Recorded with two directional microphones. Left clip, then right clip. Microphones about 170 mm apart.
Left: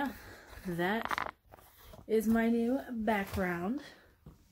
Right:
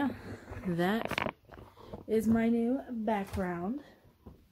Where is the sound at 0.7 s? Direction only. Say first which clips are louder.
Right 1 dB; 45° right (ahead or behind).